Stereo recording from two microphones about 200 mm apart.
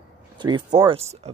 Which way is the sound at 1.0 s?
30° right (ahead or behind).